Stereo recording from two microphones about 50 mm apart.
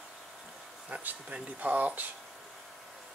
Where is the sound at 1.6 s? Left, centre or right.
Right.